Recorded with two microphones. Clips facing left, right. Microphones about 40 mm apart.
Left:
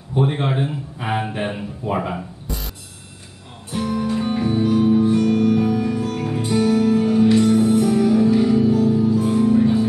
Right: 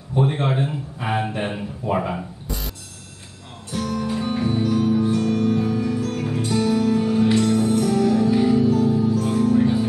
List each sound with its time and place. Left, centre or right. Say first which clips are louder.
0.1 s a man's voice: left 1 dB; centre
3.7 s music: left 3 dB; centre
4.1 s music: left 1 dB; centre
4.6 s music: left 5 dB; centre
8.3 s music: left 2 dB; centre
9.1 s music: left 2 dB; centre
9.6 s music: left 2 dB; centre